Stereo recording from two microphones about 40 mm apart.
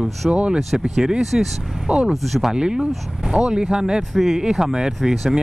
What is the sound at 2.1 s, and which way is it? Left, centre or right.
Speech, centre.